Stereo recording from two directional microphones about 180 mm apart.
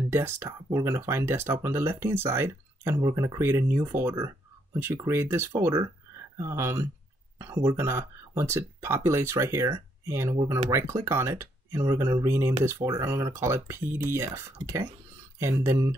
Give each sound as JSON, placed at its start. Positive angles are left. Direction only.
{"t": 0.1, "sound": "speech", "side_deg": -15}